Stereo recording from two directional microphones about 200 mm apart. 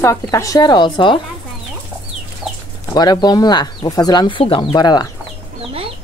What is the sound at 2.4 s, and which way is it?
Chicken, 5° right (ahead or behind).